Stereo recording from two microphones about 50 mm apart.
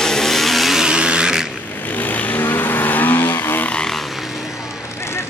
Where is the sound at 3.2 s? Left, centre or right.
Left.